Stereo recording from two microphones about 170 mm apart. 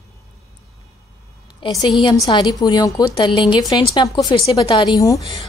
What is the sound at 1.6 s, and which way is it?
A woman's voice, 25° left (ahead or behind).